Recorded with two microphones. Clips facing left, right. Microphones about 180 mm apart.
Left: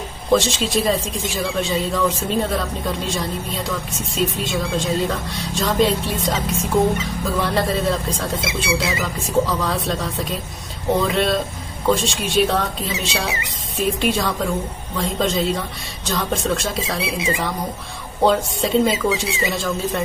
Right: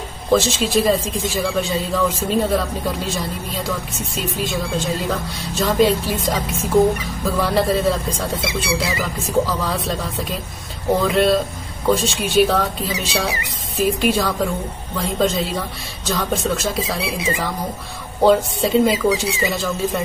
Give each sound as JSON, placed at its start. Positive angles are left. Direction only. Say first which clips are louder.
{"t": 0.3, "sound": "speech", "louder": "right 1 dB", "side_deg": 0}
{"t": 8.6, "sound": "speech", "louder": "left 1 dB", "side_deg": 20}
{"t": 9.2, "sound": "speech", "louder": "even", "side_deg": 0}
{"t": 17.2, "sound": "speech", "louder": "even", "side_deg": 25}
{"t": 18.2, "sound": "speech", "louder": "right 3 dB", "side_deg": 0}